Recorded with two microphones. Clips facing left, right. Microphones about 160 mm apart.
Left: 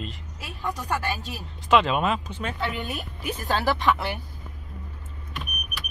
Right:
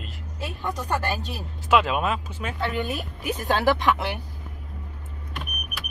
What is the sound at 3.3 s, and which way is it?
Speech, 20° right (ahead or behind).